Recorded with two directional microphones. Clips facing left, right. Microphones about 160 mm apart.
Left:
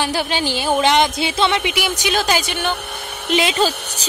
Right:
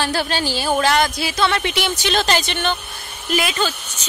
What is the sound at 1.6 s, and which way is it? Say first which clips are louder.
Speech: left 1 dB; 10° left (ahead or behind).